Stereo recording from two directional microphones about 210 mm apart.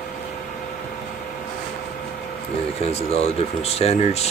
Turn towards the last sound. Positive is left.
turn(degrees=30)  # may be behind; listen again after turning